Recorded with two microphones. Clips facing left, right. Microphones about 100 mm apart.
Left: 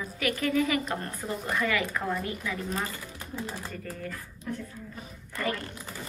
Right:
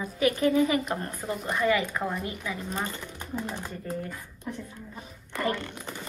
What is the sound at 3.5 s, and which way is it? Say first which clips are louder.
Speech: right 3 dB; 30° right (ahead or behind).